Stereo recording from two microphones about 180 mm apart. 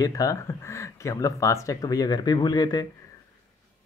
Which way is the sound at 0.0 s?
20° left (ahead or behind).